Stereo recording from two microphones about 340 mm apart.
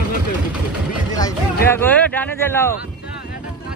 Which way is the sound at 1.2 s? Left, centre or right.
Centre.